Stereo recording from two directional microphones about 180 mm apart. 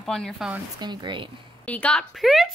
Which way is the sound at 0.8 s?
25° right (ahead or behind).